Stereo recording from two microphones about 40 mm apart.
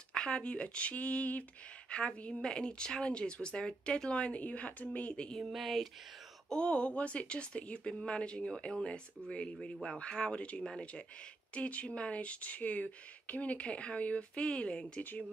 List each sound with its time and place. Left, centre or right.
0.1 s speech: left
1.9 s speech: left
2.4 s speech: left
5.4 s a sound: centre
6.5 s speech: left
9.6 s a man's voice: centre
9.9 s speech: left